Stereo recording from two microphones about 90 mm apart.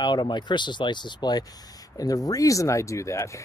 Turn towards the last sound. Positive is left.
turn(degrees=35)  # may be behind; listen again after turning